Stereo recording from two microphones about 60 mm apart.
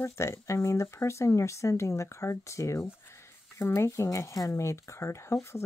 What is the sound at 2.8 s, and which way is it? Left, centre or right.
Speech, left.